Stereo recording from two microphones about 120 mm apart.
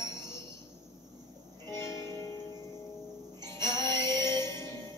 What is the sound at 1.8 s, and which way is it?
Music, 25° left (ahead or behind).